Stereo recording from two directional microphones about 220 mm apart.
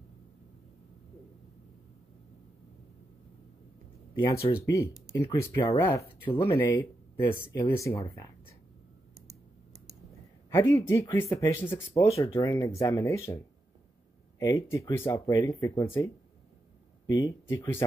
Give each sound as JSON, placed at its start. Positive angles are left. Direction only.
{"t": 4.2, "sound": "speech", "side_deg": 15}
{"t": 9.3, "sound": "typing", "side_deg": -30}
{"t": 10.5, "sound": "speech", "side_deg": 15}
{"t": 14.4, "sound": "speech", "side_deg": 15}